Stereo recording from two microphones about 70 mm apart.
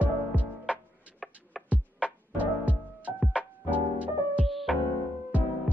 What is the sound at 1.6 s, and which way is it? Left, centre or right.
Music, right.